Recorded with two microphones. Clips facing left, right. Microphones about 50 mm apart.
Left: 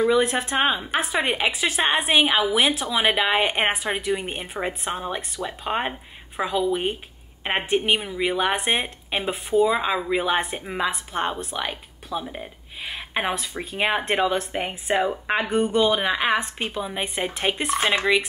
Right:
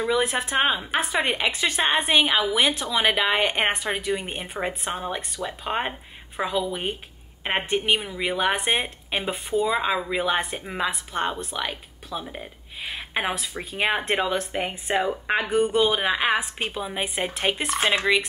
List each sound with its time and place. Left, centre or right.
0.1 s a woman's voice: centre